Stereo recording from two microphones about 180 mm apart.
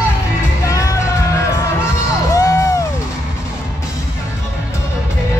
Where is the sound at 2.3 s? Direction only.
15° left (ahead or behind).